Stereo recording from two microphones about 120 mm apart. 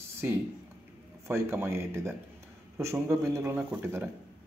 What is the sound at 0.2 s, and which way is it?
A man's voice, 15° right (ahead or behind).